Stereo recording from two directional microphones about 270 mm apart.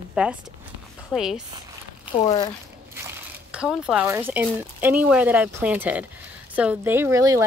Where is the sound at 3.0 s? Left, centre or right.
Centre.